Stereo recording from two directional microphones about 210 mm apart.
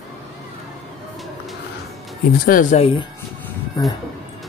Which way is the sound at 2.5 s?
35° left (ahead or behind).